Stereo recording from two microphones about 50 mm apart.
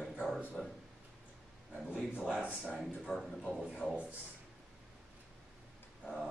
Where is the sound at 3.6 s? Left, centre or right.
Centre.